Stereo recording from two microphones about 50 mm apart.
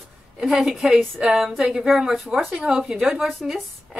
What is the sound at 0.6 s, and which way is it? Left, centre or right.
Speech, centre.